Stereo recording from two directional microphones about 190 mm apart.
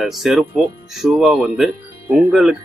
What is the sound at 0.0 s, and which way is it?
Speech, centre (ahead or behind).